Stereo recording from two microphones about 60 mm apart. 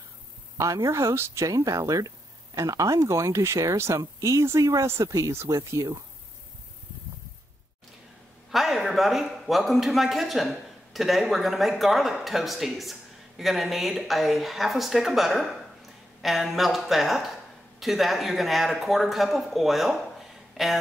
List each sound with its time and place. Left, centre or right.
0.6 s speech: right
1.5 s speech: right
8.5 s speech: centre